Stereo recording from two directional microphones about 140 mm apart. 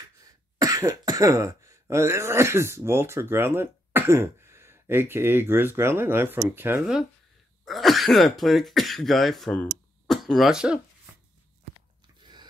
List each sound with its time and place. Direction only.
0.2 s speech: 25° right (ahead or behind)
7.6 s speech: centre (ahead or behind)
12.2 s a sound: 30° right (ahead or behind)